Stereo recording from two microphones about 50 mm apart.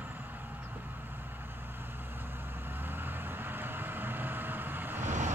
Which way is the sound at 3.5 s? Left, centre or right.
Right.